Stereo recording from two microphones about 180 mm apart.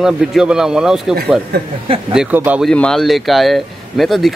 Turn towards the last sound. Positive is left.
turn(degrees=0)  # may be behind; listen again after turning